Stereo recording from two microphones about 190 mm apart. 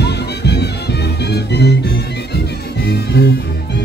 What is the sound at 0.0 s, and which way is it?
Music, 60° left (ahead or behind).